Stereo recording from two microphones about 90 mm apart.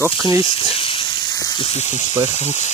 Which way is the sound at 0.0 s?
40° right (ahead or behind).